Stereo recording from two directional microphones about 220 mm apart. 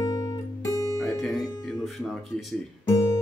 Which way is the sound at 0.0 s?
15° left (ahead or behind).